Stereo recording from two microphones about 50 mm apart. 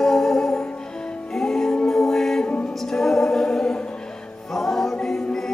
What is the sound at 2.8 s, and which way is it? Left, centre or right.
A capella, centre.